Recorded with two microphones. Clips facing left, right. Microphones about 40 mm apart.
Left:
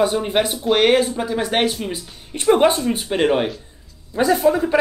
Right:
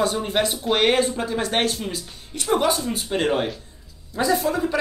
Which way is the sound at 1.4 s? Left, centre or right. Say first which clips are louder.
Left 3 dB; centre.